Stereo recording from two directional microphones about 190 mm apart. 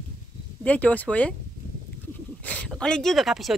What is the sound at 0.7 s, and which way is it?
Speech, 10° left (ahead or behind).